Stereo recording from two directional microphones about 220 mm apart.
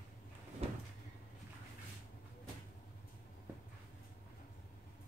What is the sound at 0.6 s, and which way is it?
Cupboard open or close, 30° right (ahead or behind).